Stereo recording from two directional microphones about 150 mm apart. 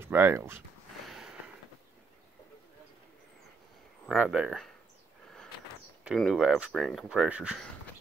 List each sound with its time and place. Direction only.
0.0 s speech: 15° right (ahead or behind)
1.0 s a sound: centre (ahead or behind)
4.0 s speech: 5° right (ahead or behind)
6.1 s speech: centre (ahead or behind)